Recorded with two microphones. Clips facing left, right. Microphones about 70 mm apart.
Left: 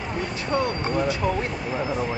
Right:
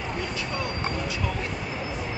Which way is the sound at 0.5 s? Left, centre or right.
Left.